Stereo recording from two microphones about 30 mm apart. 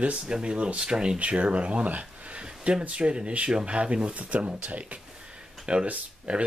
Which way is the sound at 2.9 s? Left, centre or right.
Right.